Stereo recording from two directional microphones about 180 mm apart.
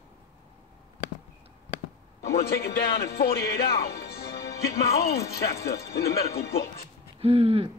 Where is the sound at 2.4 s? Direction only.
60° left (ahead or behind).